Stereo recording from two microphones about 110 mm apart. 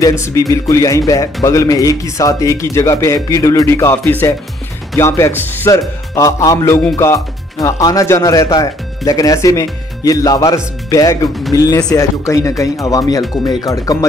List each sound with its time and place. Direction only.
0.2 s speech: 30° left (ahead or behind)